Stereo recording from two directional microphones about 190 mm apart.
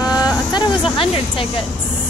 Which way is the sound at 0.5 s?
25° left (ahead or behind).